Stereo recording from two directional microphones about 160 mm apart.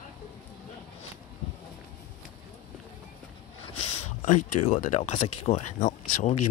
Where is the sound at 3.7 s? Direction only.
50° left (ahead or behind).